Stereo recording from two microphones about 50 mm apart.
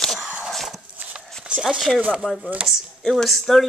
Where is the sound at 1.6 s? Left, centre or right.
Centre.